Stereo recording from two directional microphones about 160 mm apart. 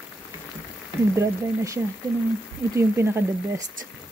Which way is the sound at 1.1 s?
20° right (ahead or behind).